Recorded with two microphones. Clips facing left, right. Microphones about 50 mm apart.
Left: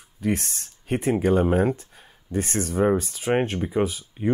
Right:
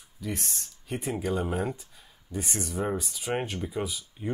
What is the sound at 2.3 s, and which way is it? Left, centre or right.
Speech, left.